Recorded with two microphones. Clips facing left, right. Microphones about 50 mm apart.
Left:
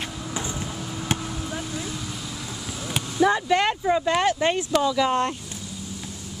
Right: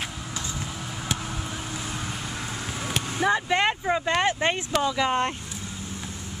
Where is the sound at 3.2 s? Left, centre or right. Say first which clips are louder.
Left 3 dB; centre.